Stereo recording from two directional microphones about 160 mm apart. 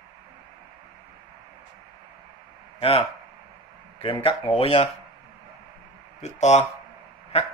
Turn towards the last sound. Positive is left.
turn(degrees=40)  # may be behind; listen again after turning